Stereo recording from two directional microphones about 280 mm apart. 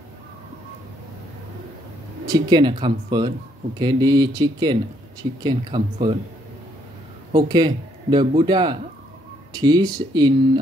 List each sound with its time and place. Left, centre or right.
2.2 s speech: centre
7.3 s speech: centre